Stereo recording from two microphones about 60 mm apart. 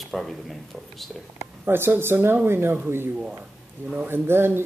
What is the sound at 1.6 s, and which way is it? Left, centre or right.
Speech, right.